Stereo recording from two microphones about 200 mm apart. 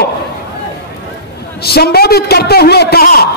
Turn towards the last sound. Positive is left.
turn(degrees=50)  # may be behind; listen again after turning